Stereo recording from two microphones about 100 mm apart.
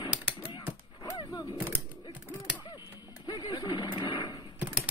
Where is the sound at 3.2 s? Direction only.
40° left (ahead or behind).